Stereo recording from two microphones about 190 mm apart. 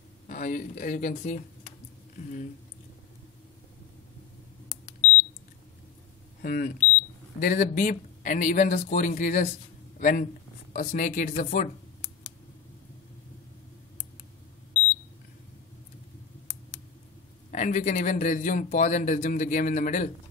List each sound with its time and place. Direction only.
0.3 s speech: 45° left (ahead or behind)
6.4 s speech: 45° left (ahead or behind)
17.5 s a man's voice: 45° left (ahead or behind)